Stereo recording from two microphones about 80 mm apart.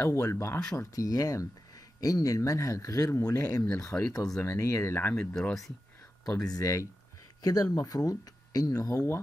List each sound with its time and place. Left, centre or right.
0.0 s speech: left
0.7 s speech: left
3.9 s speech: centre
4.4 s speech: left
5.1 s speech: centre
6.2 s speech: left